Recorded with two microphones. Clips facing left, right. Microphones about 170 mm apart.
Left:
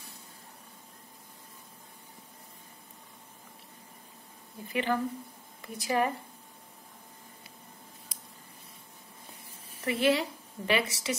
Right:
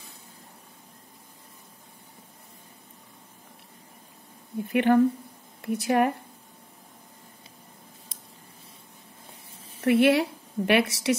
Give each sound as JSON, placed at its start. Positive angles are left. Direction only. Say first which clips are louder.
{"t": 4.6, "sound": "speech", "louder": "right 10 dB", "side_deg": -60}
{"t": 9.8, "sound": "a woman's voice", "louder": "right 7 dB", "side_deg": -65}